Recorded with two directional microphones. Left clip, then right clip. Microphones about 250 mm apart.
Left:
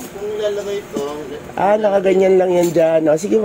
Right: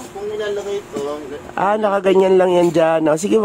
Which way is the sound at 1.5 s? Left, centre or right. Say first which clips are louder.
Left 2 dB; centre.